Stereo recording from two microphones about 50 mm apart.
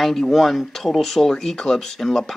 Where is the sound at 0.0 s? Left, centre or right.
Centre.